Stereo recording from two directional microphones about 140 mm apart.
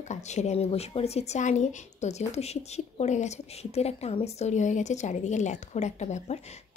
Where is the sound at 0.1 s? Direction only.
55° left (ahead or behind).